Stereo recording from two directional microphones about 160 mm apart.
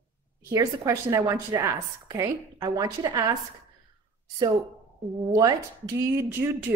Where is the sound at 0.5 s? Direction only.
20° right (ahead or behind).